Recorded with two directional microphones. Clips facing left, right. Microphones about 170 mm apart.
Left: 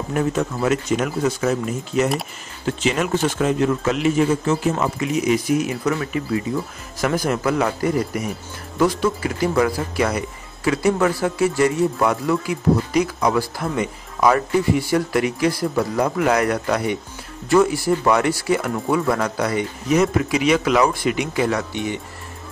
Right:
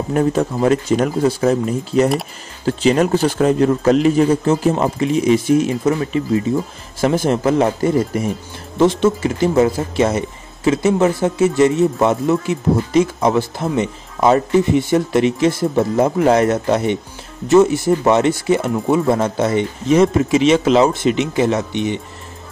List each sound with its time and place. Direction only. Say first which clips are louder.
0.1 s speech: right 5 dB; 35° right (ahead or behind)